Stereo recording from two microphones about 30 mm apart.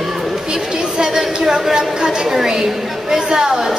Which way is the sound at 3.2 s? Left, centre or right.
Centre.